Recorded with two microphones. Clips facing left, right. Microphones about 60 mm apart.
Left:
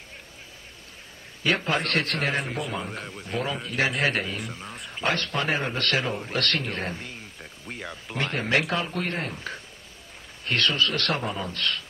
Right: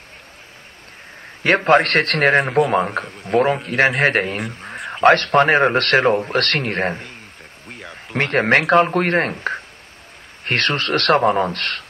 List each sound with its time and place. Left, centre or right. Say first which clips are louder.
1.4 s a man's voice: right 11 dB; right
4.6 s a man's voice: right 11 dB; right
7.6 s a sound: even; centre
7.9 s a man's voice: right 11 dB; right